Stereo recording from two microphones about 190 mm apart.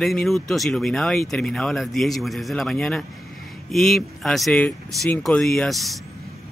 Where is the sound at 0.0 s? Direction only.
Centre (ahead or behind).